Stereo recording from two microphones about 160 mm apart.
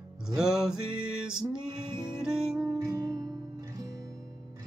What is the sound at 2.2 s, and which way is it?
Music, 5° right (ahead or behind).